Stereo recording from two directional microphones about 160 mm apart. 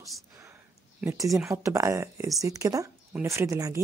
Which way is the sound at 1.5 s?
20° right (ahead or behind).